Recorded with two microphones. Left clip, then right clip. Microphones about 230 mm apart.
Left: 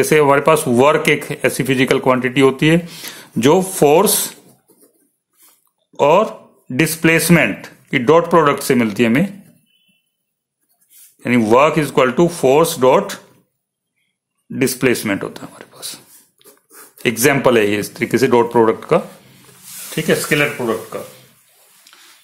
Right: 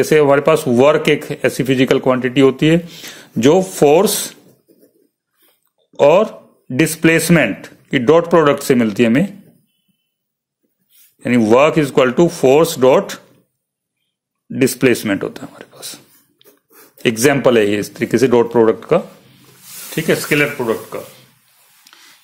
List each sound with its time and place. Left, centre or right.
0.0 s speech: centre
5.9 s speech: centre
10.9 s speech: centre
14.5 s speech: centre
19.9 s speech: centre